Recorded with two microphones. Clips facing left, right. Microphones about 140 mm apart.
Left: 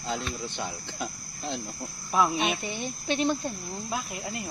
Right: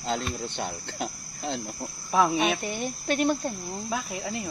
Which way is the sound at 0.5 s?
65° right (ahead or behind).